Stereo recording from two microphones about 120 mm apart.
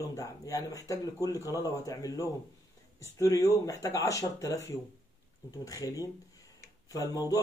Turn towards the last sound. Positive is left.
turn(degrees=30)  # may be behind; listen again after turning